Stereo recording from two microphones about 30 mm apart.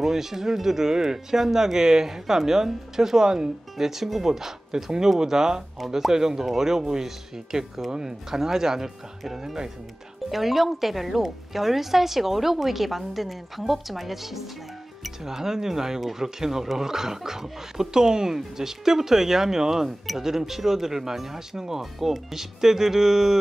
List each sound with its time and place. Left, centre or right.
0.0 s speech: centre
3.7 s speech: centre
10.3 s a woman's voice: centre